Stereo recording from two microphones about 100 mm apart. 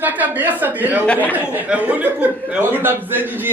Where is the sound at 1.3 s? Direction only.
15° right (ahead or behind).